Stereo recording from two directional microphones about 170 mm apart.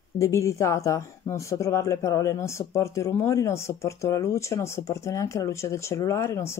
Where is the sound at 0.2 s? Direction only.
15° left (ahead or behind).